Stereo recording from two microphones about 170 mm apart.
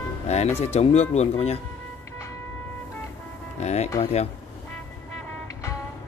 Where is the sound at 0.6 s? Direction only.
40° left (ahead or behind).